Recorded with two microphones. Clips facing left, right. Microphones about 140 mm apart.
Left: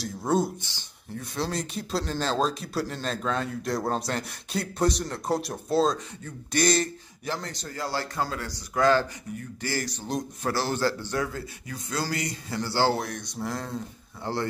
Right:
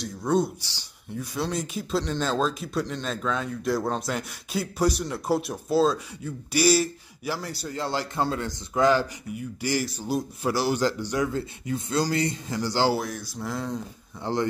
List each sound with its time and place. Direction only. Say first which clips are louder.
0.6 s speech: left 2 dB; 20° left (ahead or behind)
1.3 s a man's voice: right 1 dB; centre (ahead or behind)
7.7 s a man's voice: right 2 dB; 20° right (ahead or behind)
11.3 s a man's voice: right 7 dB; 25° right (ahead or behind)
12.9 s speech: right 2 dB; 5° right (ahead or behind)
14.2 s a man's voice: right 3 dB; 15° right (ahead or behind)